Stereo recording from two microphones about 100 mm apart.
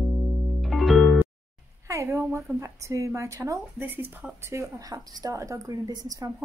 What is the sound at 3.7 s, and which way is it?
A woman's voice, 20° right (ahead or behind).